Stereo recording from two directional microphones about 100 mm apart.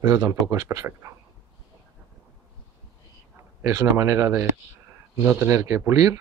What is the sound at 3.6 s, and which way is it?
Speech, 30° right (ahead or behind).